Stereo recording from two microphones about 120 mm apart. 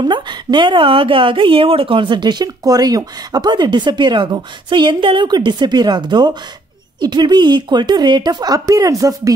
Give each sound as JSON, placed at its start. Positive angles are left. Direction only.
{"t": 0.0, "sound": "a woman's voice", "side_deg": -40}